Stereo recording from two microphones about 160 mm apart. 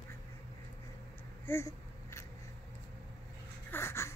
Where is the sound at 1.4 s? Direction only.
15° left (ahead or behind).